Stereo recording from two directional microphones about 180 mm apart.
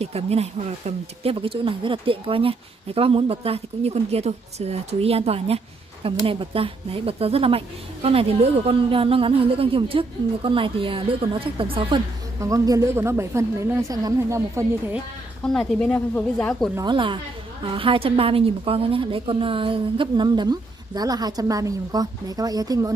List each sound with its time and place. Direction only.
0.0 s speech: 35° right (ahead or behind)
12.4 s a woman's voice: 15° right (ahead or behind)
15.4 s speech: 5° left (ahead or behind)
16.7 s a woman's voice: 25° right (ahead or behind)